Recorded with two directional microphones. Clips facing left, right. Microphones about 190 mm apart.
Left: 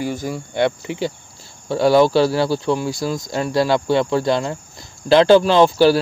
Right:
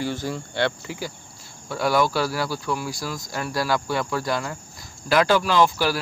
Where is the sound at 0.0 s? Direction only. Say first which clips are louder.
Left 3 dB; 10° left (ahead or behind).